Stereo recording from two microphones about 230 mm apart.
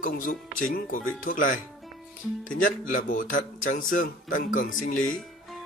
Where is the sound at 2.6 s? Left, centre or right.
Left.